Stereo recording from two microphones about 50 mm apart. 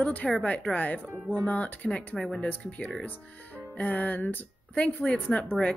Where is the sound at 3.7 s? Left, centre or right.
Left.